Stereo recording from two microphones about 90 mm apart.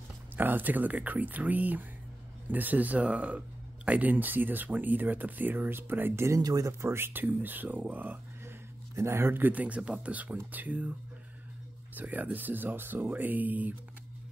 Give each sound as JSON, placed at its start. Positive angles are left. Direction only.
{"t": 0.4, "sound": "speech", "side_deg": -20}
{"t": 11.9, "sound": "speech", "side_deg": -20}